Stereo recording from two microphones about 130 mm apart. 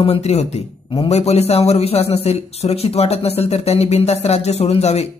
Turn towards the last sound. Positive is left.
turn(degrees=50)  # may be behind; listen again after turning